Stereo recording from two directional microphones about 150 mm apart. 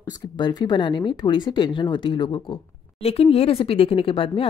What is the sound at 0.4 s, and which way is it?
Speech, 30° left (ahead or behind).